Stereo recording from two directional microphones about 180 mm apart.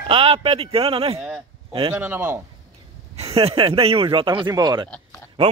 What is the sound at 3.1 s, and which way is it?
Speech, 35° right (ahead or behind).